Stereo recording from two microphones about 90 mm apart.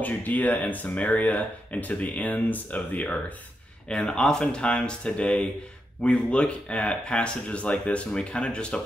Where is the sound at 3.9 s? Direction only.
5° left (ahead or behind).